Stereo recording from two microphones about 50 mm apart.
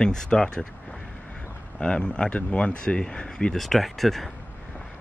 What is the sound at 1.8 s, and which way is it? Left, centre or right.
Speech, centre.